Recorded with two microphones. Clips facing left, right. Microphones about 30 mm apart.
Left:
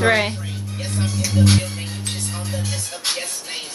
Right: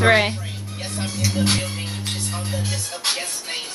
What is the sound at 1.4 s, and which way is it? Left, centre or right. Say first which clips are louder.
Music: left 4 dB; centre.